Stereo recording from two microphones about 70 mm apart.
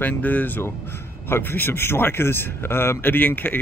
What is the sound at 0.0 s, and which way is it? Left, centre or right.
Speech, left.